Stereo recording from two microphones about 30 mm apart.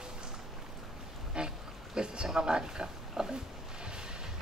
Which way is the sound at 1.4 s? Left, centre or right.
Right.